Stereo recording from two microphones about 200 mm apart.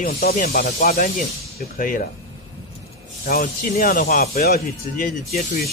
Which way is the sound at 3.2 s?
45° left (ahead or behind).